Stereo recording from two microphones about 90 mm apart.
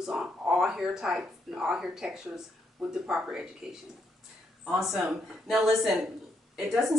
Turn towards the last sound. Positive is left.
turn(degrees=0)  # may be behind; listen again after turning